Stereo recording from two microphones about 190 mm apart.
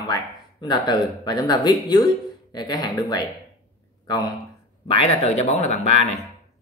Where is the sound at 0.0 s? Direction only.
20° left (ahead or behind).